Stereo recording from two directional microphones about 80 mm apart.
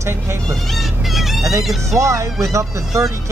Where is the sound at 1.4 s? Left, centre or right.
Right.